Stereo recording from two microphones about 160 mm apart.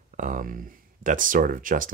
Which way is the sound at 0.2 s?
55° right (ahead or behind).